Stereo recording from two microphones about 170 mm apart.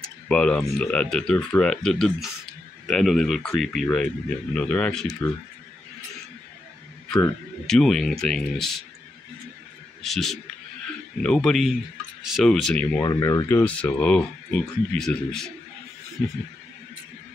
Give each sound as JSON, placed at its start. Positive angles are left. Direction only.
{"t": 0.3, "sound": "speech", "side_deg": 5}
{"t": 7.1, "sound": "speech", "side_deg": 5}
{"t": 10.0, "sound": "speech", "side_deg": 0}
{"t": 13.0, "sound": "speech", "side_deg": 20}
{"t": 13.6, "sound": "speech", "side_deg": 10}